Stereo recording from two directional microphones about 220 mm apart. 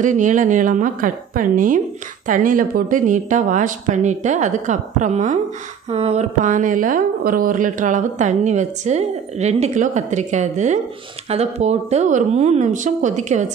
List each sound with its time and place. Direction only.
0.0 s a woman's voice: 35° right (ahead or behind)